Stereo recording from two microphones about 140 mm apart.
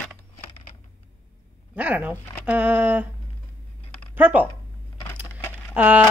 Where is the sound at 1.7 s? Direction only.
10° right (ahead or behind).